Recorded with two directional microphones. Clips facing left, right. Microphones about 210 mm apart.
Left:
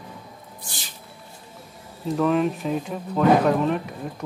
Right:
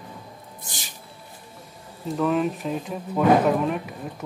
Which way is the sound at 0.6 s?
15° right (ahead or behind).